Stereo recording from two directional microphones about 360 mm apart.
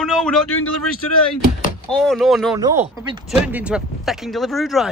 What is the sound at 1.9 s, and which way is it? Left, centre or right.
Speech, centre.